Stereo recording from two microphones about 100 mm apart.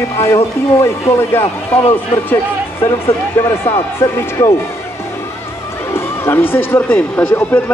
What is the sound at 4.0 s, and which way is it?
Speech, 25° left (ahead or behind).